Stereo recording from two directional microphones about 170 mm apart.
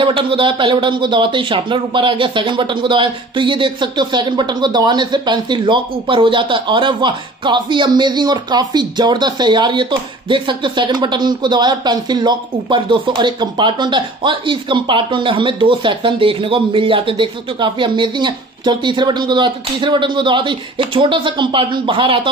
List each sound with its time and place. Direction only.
0.0 s speech: 30° right (ahead or behind)